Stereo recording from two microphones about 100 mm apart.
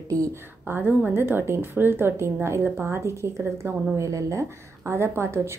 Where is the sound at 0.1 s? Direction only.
35° right (ahead or behind).